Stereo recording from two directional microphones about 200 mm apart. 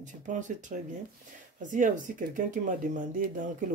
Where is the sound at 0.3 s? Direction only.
40° right (ahead or behind).